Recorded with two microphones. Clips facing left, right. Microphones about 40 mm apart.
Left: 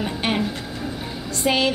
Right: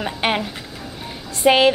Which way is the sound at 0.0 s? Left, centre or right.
Right.